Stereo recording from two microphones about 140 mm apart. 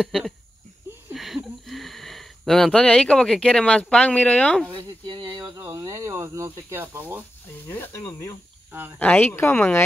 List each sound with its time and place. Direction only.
0.0 s speech: centre (ahead or behind)
4.6 s a sound: 30° right (ahead or behind)
5.6 s speech: 20° right (ahead or behind)
7.6 s speech: 15° left (ahead or behind)